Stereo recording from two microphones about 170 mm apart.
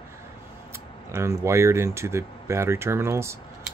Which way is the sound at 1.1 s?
15° right (ahead or behind).